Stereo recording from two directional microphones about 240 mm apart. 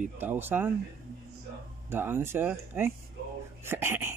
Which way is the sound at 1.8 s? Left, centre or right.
Centre.